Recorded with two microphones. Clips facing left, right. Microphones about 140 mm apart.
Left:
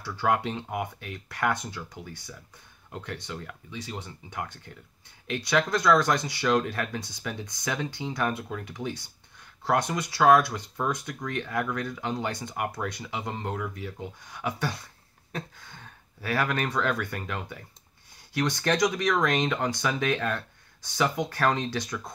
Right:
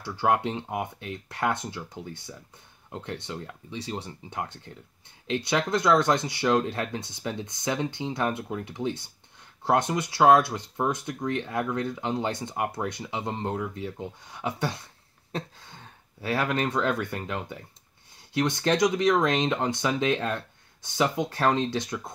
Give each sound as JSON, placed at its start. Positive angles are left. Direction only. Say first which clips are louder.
{"t": 0.0, "sound": "speech", "louder": "right 2 dB", "side_deg": -25}